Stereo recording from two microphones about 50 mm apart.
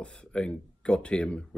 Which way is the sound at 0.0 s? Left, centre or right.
Left.